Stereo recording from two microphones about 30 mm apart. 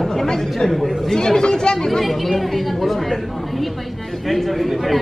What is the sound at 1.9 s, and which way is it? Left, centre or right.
Speech, centre.